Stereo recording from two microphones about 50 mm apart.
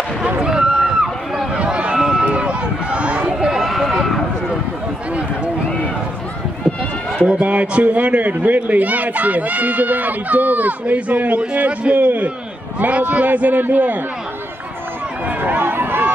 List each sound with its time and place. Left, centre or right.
0.4 s a sound: centre
1.5 s run: centre
2.2 s run: right
3.3 s run: centre
7.2 s speech: right
15.2 s run: right